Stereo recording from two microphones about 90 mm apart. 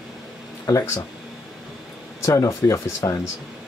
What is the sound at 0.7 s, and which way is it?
Speech, 35° left (ahead or behind).